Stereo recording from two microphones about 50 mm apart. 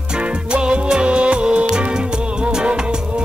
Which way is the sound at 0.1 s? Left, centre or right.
Right.